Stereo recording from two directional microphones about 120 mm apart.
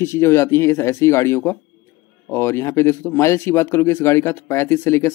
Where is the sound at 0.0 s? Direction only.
20° left (ahead or behind).